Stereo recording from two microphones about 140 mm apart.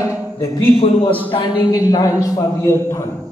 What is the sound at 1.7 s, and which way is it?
A man's voice, 25° left (ahead or behind).